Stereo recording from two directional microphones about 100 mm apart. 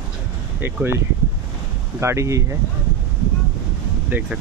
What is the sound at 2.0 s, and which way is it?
Speech, 30° right (ahead or behind).